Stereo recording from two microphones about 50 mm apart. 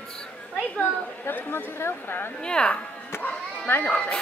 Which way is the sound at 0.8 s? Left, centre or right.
Left.